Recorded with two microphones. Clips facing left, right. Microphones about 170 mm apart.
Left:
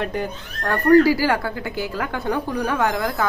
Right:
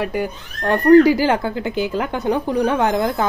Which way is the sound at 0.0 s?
10° right (ahead or behind).